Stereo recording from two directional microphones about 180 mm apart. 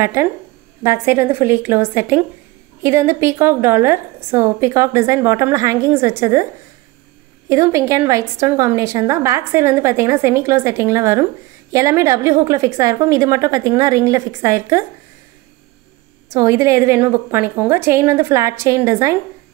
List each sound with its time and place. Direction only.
0.0 s a woman's voice: 15° right (ahead or behind)
7.4 s a woman's voice: 15° right (ahead or behind)
16.3 s a woman's voice: 15° right (ahead or behind)